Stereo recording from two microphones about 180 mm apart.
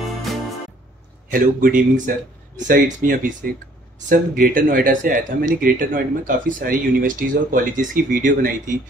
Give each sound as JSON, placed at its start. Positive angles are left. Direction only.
{"t": 0.0, "sound": "music", "side_deg": 0}
{"t": 1.3, "sound": "speech", "side_deg": -50}